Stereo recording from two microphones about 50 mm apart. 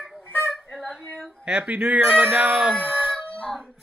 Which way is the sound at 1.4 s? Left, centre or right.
Right.